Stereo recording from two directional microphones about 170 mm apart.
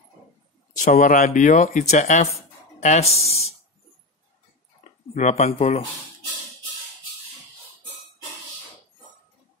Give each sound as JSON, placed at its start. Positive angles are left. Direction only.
{"t": 0.7, "sound": "speech", "side_deg": 50}
{"t": 5.1, "sound": "speech", "side_deg": 40}